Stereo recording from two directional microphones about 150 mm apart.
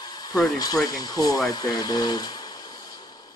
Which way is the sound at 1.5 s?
25° left (ahead or behind).